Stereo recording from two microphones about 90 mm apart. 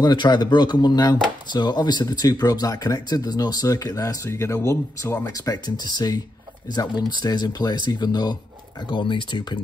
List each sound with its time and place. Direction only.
0.0 s speech: 55° left (ahead or behind)
8.8 s speech: 60° left (ahead or behind)